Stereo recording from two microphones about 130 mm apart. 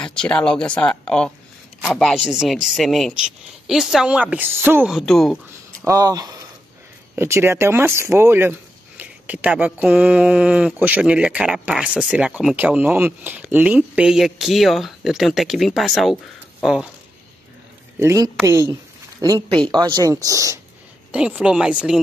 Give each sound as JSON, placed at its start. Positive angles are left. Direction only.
{"t": 0.0, "sound": "speech", "side_deg": 5}
{"t": 4.8, "sound": "speech", "side_deg": 0}
{"t": 5.9, "sound": "speech", "side_deg": -30}
{"t": 17.9, "sound": "speech", "side_deg": -20}
{"t": 19.5, "sound": "speech", "side_deg": -35}
{"t": 21.4, "sound": "speech", "side_deg": -5}